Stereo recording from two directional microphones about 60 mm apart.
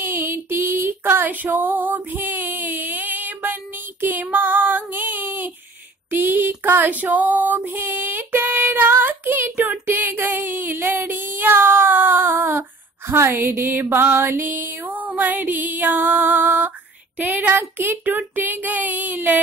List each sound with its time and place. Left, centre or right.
0.0 s female singing: right
4.0 s child singing: right
6.1 s female singing: right
13.1 s child singing: right
14.9 s child singing: right